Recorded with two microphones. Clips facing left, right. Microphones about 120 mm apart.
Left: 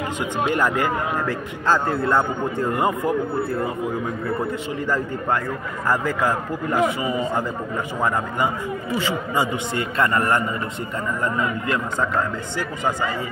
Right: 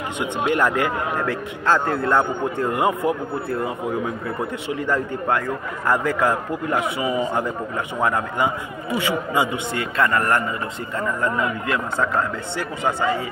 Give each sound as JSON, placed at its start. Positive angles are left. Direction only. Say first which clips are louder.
{"t": 0.2, "sound": "a man's voice", "louder": "right 2 dB", "side_deg": 5}
{"t": 2.7, "sound": "a man's voice", "louder": "right 1 dB", "side_deg": -5}
{"t": 4.8, "sound": "a man's voice", "louder": "right 1 dB", "side_deg": 5}
{"t": 7.0, "sound": "a man's voice", "louder": "right 1 dB", "side_deg": -10}
{"t": 10.0, "sound": "a man's voice", "louder": "right 1 dB", "side_deg": 20}